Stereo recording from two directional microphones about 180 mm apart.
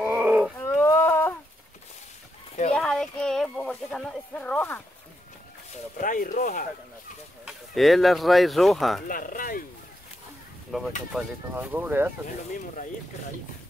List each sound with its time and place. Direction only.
0.0 s wild animals: 5° right (ahead or behind)
0.6 s a sound: 10° left (ahead or behind)
2.7 s speech: 5° left (ahead or behind)
5.9 s speech: 45° left (ahead or behind)
7.4 s speech: centre (ahead or behind)
9.0 s speech: 50° left (ahead or behind)
10.7 s speech: centre (ahead or behind)